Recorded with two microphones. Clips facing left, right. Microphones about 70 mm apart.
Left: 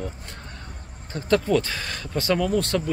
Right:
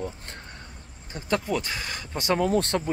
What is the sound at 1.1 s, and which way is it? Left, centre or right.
Speech, centre.